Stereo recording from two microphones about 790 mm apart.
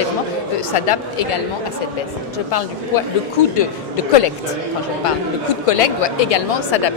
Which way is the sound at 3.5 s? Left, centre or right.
Left.